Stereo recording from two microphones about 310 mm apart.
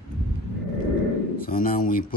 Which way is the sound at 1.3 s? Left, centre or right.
Left.